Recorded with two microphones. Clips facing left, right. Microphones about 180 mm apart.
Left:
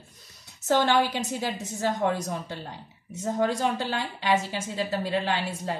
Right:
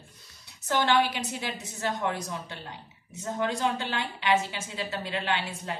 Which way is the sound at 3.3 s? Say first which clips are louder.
Left 2 dB; 40° left (ahead or behind).